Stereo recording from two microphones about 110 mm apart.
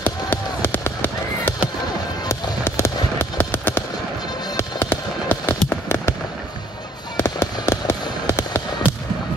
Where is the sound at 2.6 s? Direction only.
25° left (ahead or behind).